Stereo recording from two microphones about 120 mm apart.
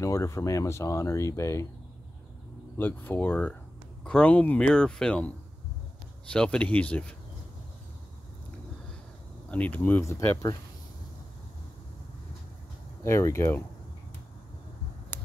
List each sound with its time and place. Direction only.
0.0 s speech: 25° left (ahead or behind)
2.8 s speech: 15° left (ahead or behind)
6.3 s speech: 10° left (ahead or behind)
9.5 s speech: 10° left (ahead or behind)
13.0 s speech: 25° left (ahead or behind)
15.1 s a sound: 15° left (ahead or behind)